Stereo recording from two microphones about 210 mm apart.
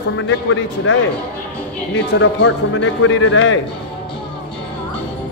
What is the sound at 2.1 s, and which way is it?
Speech, 65° left (ahead or behind).